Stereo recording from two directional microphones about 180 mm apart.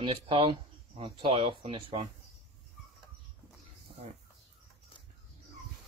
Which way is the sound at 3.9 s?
30° right (ahead or behind).